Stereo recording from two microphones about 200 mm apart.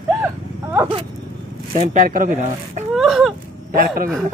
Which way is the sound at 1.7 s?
40° right (ahead or behind).